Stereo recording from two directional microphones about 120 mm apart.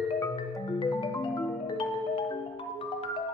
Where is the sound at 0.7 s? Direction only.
40° left (ahead or behind).